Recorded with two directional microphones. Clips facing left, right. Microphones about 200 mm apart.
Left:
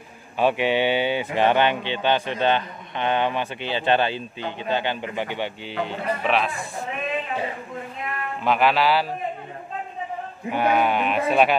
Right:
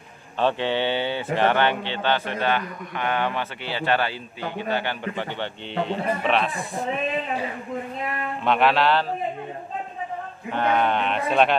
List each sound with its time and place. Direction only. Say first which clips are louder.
0.4 s a man's voice: left 2 dB; 10° left (ahead or behind)
5.8 s speech: right 2 dB; centre (ahead or behind)
8.5 s speech: even; centre (ahead or behind)
10.5 s a man's voice: left 1 dB; 10° left (ahead or behind)